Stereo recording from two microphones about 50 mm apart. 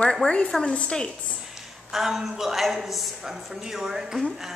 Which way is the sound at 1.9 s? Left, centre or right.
Centre.